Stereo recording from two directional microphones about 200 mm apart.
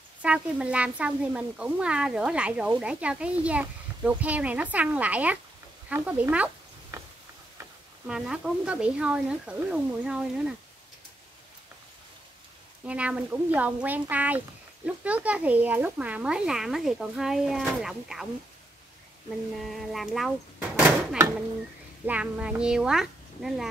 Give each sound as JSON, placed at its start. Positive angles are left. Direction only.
{"t": 0.2, "sound": "speech", "side_deg": -5}
{"t": 5.9, "sound": "a sound", "side_deg": -5}
{"t": 8.1, "sound": "speech", "side_deg": -5}
{"t": 12.8, "sound": "speech", "side_deg": -5}
{"t": 19.6, "sound": "speech", "side_deg": 0}